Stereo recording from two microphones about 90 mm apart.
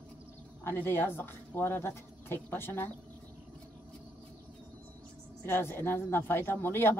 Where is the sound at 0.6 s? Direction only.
25° left (ahead or behind).